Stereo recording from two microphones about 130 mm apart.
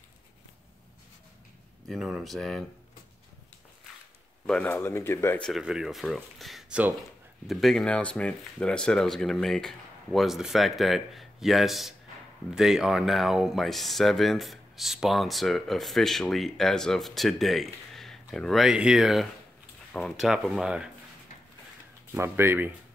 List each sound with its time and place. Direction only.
1.9 s speech: centre (ahead or behind)
4.5 s speech: 10° left (ahead or behind)
4.7 s speech: 20° left (ahead or behind)
5.4 s speech: 5° right (ahead or behind)
22.1 s speech: 15° right (ahead or behind)